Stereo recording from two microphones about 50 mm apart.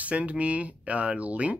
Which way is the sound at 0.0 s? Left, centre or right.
Right.